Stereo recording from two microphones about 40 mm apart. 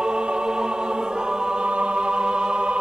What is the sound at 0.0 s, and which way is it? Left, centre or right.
Choir, right.